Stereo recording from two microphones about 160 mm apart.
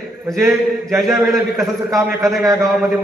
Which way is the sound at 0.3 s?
Centre (ahead or behind).